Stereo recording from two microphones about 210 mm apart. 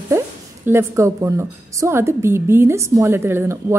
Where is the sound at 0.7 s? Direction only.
10° right (ahead or behind).